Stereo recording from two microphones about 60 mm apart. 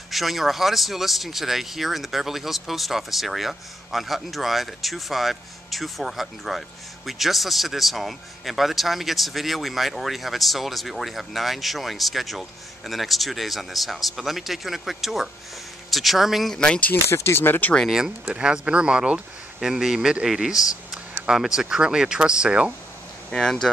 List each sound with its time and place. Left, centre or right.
0.1 s speech: centre
16.5 s speech: centre
17.1 s speech: left
17.8 s speech: centre
23.3 s speech: centre